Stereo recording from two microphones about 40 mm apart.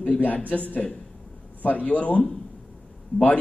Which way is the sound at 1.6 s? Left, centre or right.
Left.